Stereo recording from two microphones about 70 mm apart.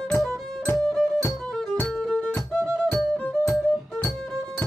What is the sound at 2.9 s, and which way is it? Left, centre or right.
Music, left.